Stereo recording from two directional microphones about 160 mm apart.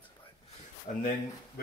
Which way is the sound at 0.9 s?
55° left (ahead or behind).